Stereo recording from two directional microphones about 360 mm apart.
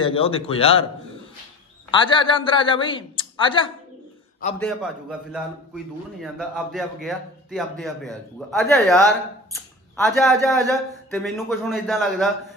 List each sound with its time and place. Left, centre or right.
0.0 s a man's voice: centre
1.9 s a man's voice: centre
6.2 s a man's voice: centre